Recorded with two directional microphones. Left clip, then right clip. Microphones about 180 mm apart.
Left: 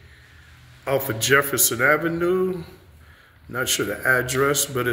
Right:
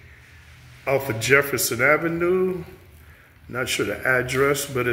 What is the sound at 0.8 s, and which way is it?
A man's voice, 5° right (ahead or behind).